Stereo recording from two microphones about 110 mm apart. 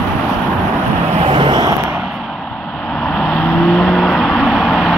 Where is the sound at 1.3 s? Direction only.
50° right (ahead or behind).